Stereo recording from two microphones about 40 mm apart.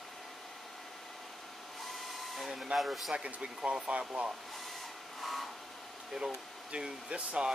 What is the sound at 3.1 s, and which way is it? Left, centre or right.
Speech, right.